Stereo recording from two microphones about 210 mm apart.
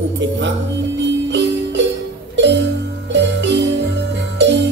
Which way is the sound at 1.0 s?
55° right (ahead or behind).